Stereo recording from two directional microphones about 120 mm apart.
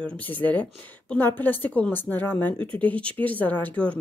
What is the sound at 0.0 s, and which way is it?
A woman's voice, 10° left (ahead or behind).